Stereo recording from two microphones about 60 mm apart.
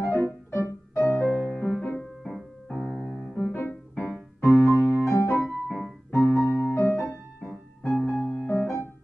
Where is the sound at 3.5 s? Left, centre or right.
Left.